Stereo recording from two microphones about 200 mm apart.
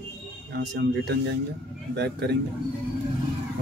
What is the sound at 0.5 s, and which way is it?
Speech, 55° right (ahead or behind).